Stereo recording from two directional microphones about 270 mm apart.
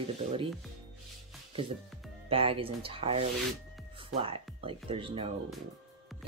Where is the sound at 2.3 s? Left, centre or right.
Right.